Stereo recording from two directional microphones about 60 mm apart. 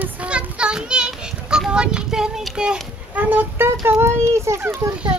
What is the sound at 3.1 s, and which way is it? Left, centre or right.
Speech, right.